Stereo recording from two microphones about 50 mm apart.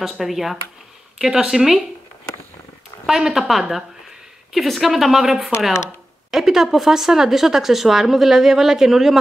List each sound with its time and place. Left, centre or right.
0.0 s speech: centre
3.1 s speech: centre